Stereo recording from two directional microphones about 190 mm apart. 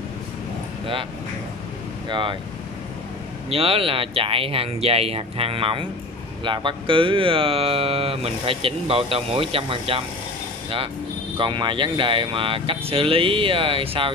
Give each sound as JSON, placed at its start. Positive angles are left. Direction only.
{"t": 2.0, "sound": "speech", "side_deg": -25}
{"t": 3.4, "sound": "speech", "side_deg": -30}
{"t": 11.3, "sound": "speech", "side_deg": -25}